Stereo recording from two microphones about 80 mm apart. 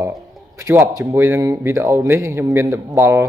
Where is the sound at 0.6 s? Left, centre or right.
Right.